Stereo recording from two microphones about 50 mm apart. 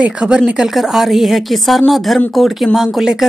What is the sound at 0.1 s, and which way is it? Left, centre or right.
Speech, right.